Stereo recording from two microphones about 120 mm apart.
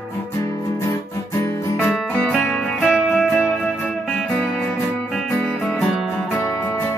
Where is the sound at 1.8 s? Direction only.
5° left (ahead or behind).